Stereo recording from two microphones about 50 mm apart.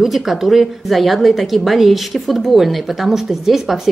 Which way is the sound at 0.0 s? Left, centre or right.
Centre.